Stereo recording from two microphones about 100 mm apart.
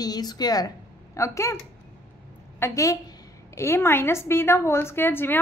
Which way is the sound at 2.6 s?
35° left (ahead or behind).